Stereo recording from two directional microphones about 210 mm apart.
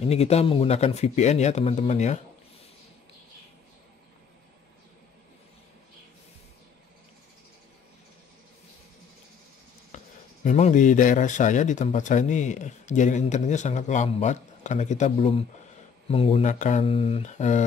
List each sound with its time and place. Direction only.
0.0 s speech: 30° left (ahead or behind)
9.9 s speech: 35° left (ahead or behind)